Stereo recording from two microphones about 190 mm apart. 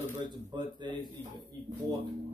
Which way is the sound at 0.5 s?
25° right (ahead or behind).